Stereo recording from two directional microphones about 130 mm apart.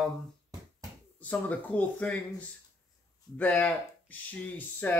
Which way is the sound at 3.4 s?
10° left (ahead or behind).